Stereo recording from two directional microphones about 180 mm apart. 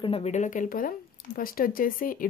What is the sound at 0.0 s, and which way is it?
Speech, 35° left (ahead or behind).